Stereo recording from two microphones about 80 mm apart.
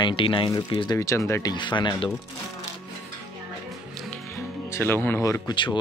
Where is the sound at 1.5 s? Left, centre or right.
Left.